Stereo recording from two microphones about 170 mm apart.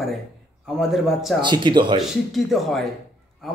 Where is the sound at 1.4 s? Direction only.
25° right (ahead or behind).